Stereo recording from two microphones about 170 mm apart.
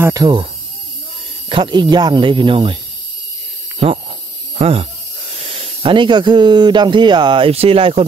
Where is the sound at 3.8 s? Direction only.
35° right (ahead or behind).